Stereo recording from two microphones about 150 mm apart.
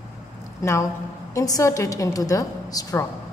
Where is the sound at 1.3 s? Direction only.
20° left (ahead or behind).